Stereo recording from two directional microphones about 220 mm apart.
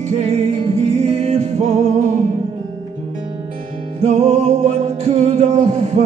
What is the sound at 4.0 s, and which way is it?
Music, 30° right (ahead or behind).